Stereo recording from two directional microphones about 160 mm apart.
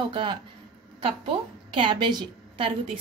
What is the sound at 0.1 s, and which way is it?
A woman's voice, 30° right (ahead or behind).